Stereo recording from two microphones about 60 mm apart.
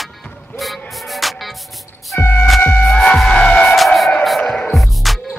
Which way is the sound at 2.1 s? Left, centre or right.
Left.